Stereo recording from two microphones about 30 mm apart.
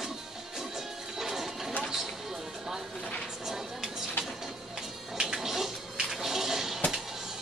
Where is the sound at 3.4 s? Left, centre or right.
Centre.